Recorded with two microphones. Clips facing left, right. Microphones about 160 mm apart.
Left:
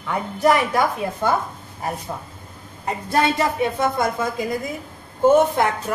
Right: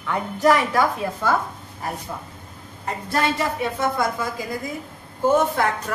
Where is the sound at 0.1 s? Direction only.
15° left (ahead or behind).